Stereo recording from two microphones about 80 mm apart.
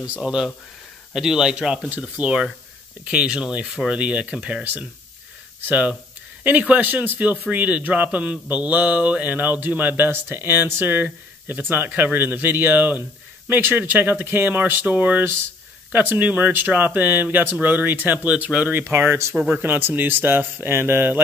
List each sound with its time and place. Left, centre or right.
0.0 s speech: centre; by 19.2 s right
19.3 s speech: centre
19.6 s speech: right